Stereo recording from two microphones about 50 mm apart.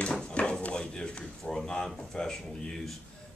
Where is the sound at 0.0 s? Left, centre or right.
Left.